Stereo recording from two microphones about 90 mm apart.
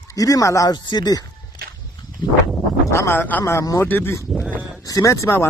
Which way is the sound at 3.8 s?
20° left (ahead or behind).